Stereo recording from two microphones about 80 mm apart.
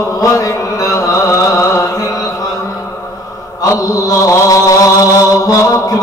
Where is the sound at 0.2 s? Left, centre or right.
Left.